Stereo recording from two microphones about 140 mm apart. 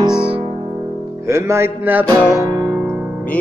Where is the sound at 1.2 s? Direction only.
20° right (ahead or behind).